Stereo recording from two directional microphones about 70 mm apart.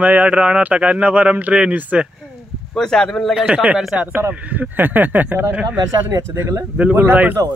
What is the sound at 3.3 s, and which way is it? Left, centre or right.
A man's voice, centre.